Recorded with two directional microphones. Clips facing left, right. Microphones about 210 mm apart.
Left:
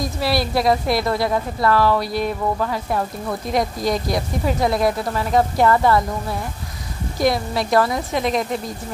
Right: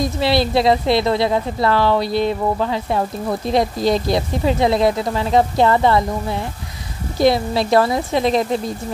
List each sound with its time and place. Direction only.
0.0 s speech: 25° right (ahead or behind)